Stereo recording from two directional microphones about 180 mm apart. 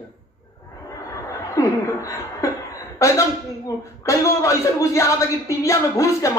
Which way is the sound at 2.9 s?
15° left (ahead or behind).